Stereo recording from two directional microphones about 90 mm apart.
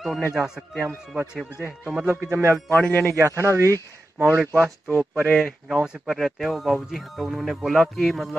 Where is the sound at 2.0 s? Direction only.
30° right (ahead or behind).